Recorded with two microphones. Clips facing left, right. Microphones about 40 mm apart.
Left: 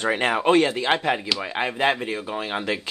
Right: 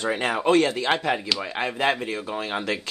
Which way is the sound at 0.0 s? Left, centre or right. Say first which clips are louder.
Left 2 dB; left.